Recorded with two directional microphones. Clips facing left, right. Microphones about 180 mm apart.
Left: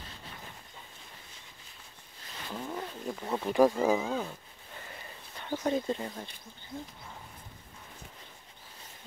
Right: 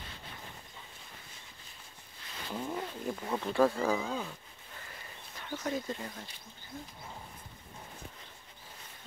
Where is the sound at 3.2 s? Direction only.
15° left (ahead or behind).